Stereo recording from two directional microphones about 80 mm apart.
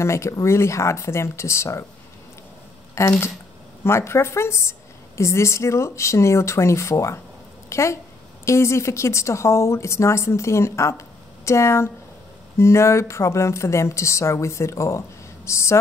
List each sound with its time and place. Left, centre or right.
0.0 s a woman's voice: left
2.9 s a woman's voice: left